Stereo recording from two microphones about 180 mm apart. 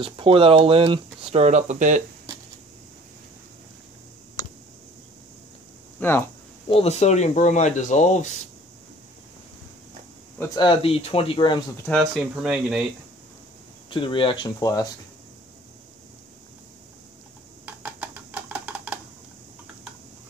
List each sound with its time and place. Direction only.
0.0 s speech: 30° right (ahead or behind); by 2.0 s 45° right (ahead or behind)
5.9 s speech: 10° left (ahead or behind)
6.7 s speech: 35° left (ahead or behind)
10.5 s speech: 25° left (ahead or behind)
11.8 s speech: 5° left (ahead or behind)
13.8 s speech: 30° left (ahead or behind)
17.6 s a sound: 10° right (ahead or behind)